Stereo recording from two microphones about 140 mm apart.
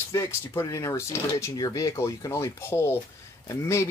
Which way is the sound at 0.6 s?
25° left (ahead or behind).